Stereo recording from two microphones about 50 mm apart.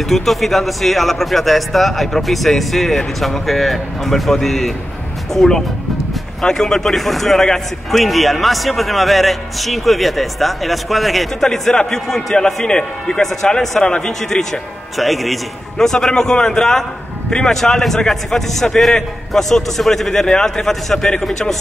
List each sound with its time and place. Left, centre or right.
0.0 s a man's voice: centre
15.0 s a man's voice: centre